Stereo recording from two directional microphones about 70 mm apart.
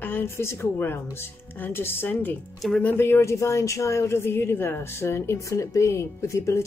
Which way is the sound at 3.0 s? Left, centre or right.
Left.